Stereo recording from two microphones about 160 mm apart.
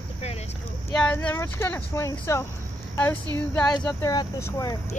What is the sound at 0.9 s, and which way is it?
Speech, 5° left (ahead or behind).